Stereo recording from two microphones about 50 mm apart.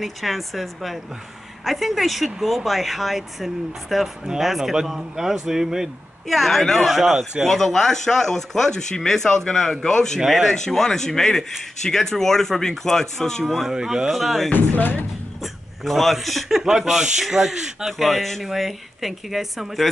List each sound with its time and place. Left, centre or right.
0.0 s speech: centre
6.2 s speech: centre
10.2 s speech: centre
10.5 s speech: centre
13.7 s speech: centre
14.1 s speech: centre
14.5 s speech: left
15.8 s speech: centre